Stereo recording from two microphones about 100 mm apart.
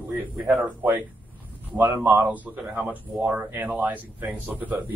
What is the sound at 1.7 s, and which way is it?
Speech, 20° right (ahead or behind).